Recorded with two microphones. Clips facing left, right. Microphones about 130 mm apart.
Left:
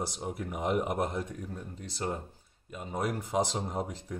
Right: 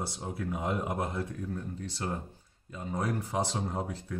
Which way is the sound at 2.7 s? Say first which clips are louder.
Even; 15° left (ahead or behind).